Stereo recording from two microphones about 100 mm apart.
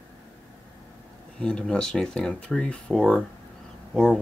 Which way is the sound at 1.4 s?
5° left (ahead or behind).